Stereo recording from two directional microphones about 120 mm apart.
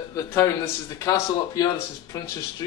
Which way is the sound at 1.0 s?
30° left (ahead or behind).